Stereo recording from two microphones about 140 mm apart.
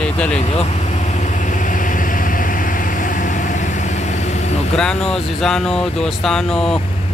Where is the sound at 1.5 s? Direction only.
70° left (ahead or behind).